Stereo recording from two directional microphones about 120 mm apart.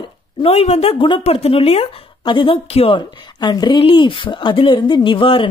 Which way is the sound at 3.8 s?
45° left (ahead or behind).